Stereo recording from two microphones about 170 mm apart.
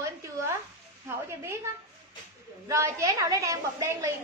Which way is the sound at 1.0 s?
15° right (ahead or behind).